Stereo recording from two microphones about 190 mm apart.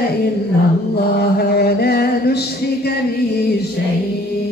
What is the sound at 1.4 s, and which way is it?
Mantra, 55° left (ahead or behind).